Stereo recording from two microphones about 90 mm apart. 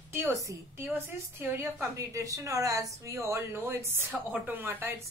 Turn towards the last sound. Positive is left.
turn(degrees=-25)  # may be behind; listen again after turning